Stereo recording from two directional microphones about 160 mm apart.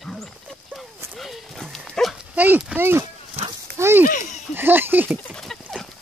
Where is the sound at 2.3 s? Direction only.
10° right (ahead or behind).